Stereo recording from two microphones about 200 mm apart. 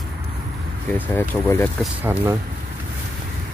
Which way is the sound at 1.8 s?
5° right (ahead or behind).